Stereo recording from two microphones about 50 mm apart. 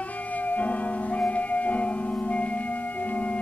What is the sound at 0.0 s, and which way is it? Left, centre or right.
Music, left.